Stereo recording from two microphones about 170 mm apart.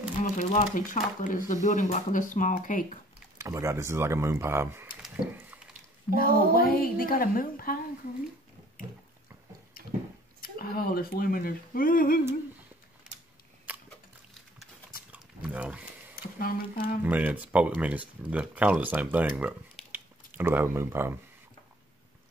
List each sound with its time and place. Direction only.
0.2 s speech: 45° left (ahead or behind)
3.3 s speech: 15° right (ahead or behind)
6.1 s speech: 60° left (ahead or behind)
10.4 s speech: 60° left (ahead or behind)
13.7 s a sound: 10° right (ahead or behind)
15.4 s a sound: 5° right (ahead or behind)
16.2 s speech: 60° left (ahead or behind)
17.0 s speech: 10° right (ahead or behind)